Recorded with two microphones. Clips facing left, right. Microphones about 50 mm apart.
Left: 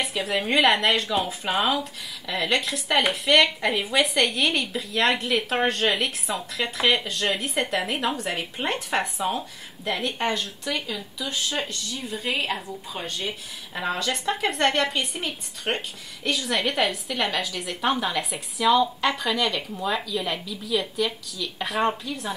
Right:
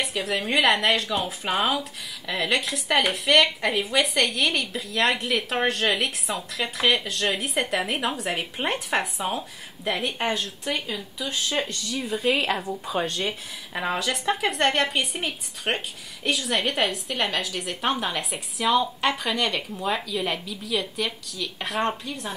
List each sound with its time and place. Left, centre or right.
0.0 s a sound: centre
0.5 s speech: centre
10.9 s speech: right
11.9 s speech: right
13.9 s speech: centre